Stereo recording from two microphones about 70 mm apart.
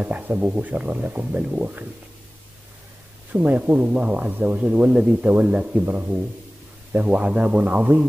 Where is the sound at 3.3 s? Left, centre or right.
Right.